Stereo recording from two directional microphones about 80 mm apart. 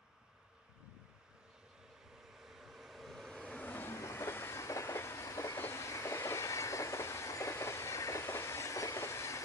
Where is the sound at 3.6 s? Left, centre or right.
Left.